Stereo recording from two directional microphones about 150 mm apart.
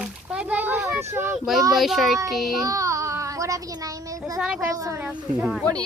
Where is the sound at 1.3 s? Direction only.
Centre (ahead or behind).